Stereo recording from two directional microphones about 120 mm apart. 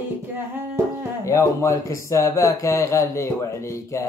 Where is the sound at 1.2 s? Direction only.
25° left (ahead or behind).